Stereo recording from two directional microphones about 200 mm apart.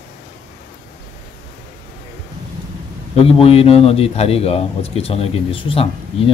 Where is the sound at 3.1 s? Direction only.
30° left (ahead or behind).